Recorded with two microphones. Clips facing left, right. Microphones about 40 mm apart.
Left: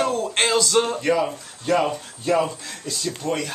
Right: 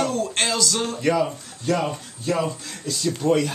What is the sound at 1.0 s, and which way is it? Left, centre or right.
Speech, centre.